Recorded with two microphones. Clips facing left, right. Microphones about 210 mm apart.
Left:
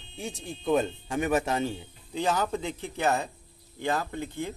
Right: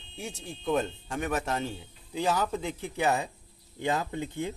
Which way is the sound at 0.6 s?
5° left (ahead or behind).